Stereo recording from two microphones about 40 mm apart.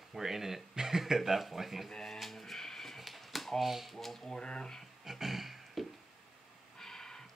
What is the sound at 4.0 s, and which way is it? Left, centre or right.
Speech, centre.